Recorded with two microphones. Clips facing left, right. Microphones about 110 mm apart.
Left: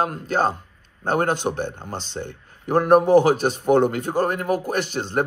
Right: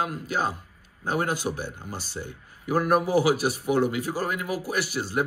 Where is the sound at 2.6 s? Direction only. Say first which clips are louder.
Left 7 dB; 45° left (ahead or behind).